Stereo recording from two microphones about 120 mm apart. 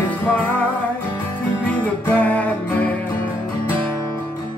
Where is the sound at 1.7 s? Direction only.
15° left (ahead or behind).